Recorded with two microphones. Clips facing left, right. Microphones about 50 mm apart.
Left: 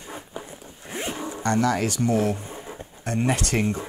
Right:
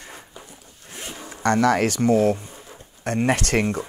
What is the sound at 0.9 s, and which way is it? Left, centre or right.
Zipper, left.